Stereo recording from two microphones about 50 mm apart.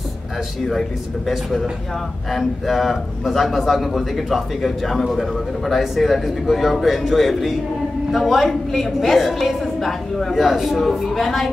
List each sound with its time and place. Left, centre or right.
0.7 s a man's voice: centre